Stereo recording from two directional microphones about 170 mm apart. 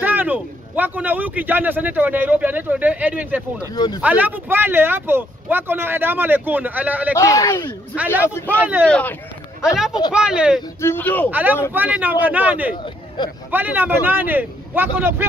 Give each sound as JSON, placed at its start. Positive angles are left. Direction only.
{"t": 0.0, "sound": "speech", "side_deg": -10}
{"t": 3.7, "sound": "speech", "side_deg": 25}
{"t": 4.0, "sound": "speech", "side_deg": -10}
{"t": 7.2, "sound": "speech", "side_deg": 20}
{"t": 7.9, "sound": "speech", "side_deg": -10}
{"t": 8.2, "sound": "speech", "side_deg": 10}
{"t": 10.1, "sound": "speech", "side_deg": -5}
{"t": 10.8, "sound": "speech", "side_deg": 10}
{"t": 11.2, "sound": "speech", "side_deg": -10}